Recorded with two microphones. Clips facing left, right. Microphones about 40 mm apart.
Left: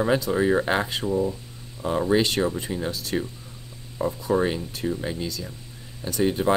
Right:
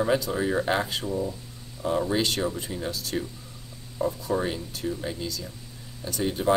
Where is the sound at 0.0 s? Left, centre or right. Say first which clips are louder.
Left 3 dB; left.